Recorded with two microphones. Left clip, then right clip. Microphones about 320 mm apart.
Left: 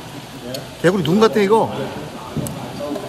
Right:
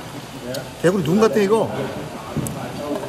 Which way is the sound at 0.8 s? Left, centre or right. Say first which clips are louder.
Left 2 dB; centre.